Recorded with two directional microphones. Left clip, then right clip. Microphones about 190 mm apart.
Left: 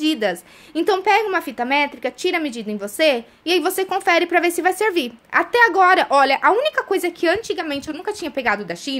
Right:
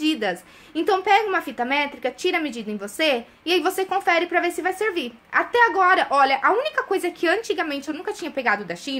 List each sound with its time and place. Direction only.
0.0 s a woman's voice: 30° left (ahead or behind)